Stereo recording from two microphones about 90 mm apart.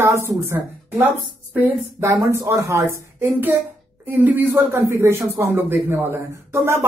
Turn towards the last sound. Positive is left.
turn(degrees=-30)  # may be behind; listen again after turning